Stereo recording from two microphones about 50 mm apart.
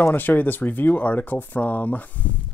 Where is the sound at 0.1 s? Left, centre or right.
Left.